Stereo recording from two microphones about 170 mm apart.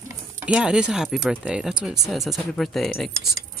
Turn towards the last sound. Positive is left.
turn(degrees=0)  # may be behind; listen again after turning